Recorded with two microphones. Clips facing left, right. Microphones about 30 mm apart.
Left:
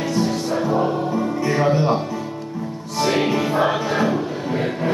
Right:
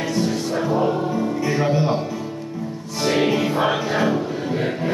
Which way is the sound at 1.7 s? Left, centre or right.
Centre.